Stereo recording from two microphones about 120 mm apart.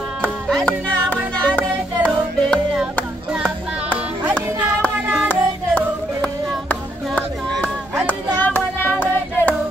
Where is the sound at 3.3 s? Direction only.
10° right (ahead or behind).